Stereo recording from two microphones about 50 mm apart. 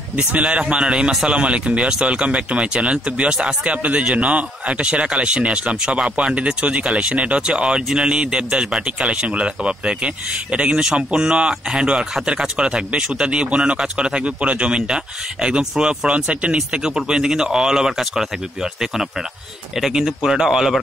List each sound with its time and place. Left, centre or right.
0.1 s a man's voice: right; by 20.7 s centre